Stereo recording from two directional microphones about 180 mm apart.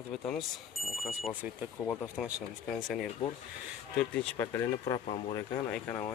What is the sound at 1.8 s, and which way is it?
Speech, 15° left (ahead or behind).